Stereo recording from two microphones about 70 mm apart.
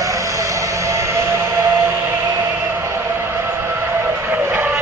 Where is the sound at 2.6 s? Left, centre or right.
Right.